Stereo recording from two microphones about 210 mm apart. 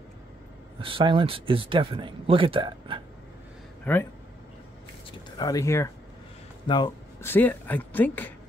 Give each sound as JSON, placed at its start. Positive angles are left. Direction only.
{"t": 0.7, "sound": "speech", "side_deg": -25}
{"t": 3.8, "sound": "speech", "side_deg": 10}
{"t": 5.4, "sound": "speech", "side_deg": 15}